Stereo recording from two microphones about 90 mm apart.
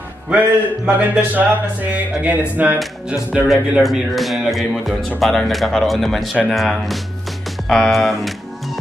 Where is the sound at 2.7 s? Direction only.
5° right (ahead or behind).